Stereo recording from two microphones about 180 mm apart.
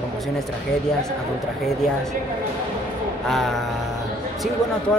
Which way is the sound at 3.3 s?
Centre (ahead or behind).